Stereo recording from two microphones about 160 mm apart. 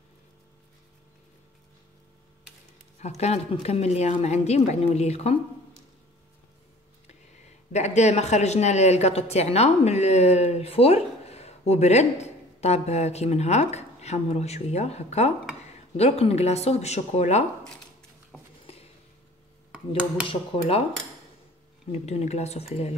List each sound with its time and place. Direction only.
3.0 s speech: 45° left (ahead or behind)
7.7 s speech: 45° left (ahead or behind)
20.2 s speech: 35° left (ahead or behind)
21.9 s speech: 45° left (ahead or behind)